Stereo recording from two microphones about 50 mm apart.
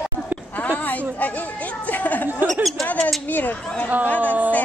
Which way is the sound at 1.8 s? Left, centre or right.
Left.